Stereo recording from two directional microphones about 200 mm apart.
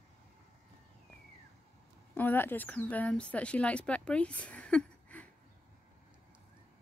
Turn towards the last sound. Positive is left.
turn(degrees=5)  # may be behind; listen again after turning